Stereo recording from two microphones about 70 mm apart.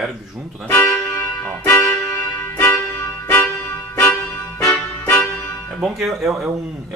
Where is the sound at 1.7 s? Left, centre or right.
Left.